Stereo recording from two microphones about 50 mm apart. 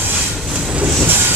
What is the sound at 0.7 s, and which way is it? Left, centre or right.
Train, right.